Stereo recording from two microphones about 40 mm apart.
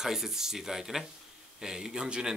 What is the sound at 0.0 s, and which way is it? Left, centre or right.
Speech, centre.